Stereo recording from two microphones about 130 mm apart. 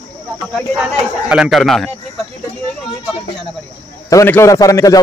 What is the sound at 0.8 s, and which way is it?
Speech, 5° right (ahead or behind).